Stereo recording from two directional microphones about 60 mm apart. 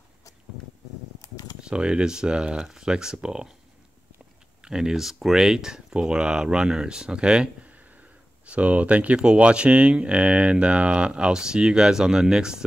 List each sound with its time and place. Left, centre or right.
1.2 s camera: left
1.6 s speech: centre
4.6 s speech: centre